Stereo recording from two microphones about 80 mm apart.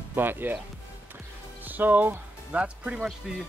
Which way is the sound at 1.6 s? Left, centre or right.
Right.